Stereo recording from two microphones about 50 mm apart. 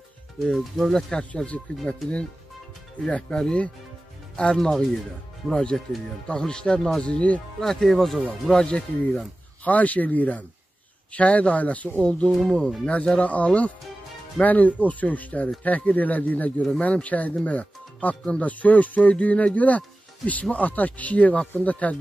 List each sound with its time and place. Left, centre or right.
0.4 s speech: centre
1.1 s speech: left
3.1 s speech: centre
7.6 s speech: centre
8.6 s speech: centre
9.7 s speech: left
12.0 s speech: centre